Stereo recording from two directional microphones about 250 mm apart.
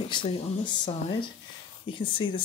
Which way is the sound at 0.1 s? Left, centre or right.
Centre.